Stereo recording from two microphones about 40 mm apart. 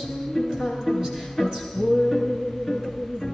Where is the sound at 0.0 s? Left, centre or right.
Centre.